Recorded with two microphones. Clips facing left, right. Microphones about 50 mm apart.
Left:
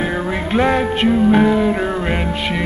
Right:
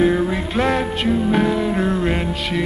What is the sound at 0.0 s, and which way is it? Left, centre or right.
Music, centre.